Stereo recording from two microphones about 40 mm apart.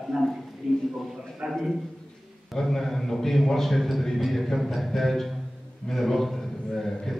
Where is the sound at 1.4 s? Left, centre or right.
Centre.